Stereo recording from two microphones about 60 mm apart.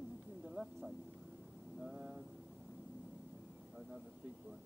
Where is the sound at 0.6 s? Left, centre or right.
Right.